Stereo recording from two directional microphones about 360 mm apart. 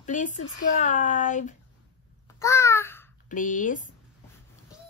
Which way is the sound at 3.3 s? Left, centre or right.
Left.